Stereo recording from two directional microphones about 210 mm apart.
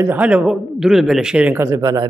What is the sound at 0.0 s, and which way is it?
A man's voice, 10° right (ahead or behind).